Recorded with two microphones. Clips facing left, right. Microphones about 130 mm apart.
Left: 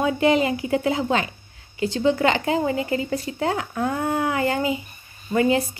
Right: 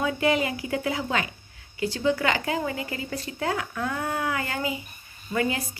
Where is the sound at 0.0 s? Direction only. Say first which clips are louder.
Left 5 dB; 25° left (ahead or behind).